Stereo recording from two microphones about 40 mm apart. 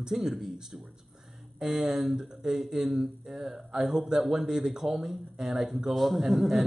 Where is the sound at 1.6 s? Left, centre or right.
Centre.